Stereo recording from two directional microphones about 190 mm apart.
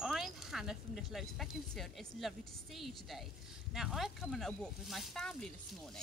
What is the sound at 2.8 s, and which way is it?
Speech, centre (ahead or behind).